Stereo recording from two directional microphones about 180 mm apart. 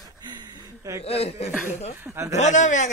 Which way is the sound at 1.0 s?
35° left (ahead or behind).